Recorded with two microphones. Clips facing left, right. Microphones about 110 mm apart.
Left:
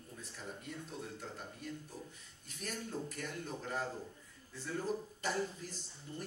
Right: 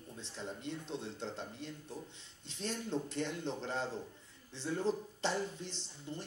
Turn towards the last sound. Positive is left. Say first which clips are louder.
# right 2 dB
turn(degrees=-25)  # may be behind; listen again after turning